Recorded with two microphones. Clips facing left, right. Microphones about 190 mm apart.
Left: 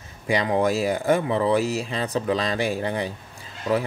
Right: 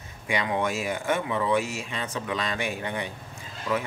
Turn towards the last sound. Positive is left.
turn(degrees=40)  # may be behind; listen again after turning